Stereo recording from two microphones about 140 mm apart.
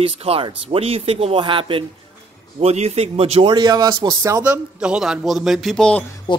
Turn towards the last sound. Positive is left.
turn(degrees=35)  # may be behind; listen again after turning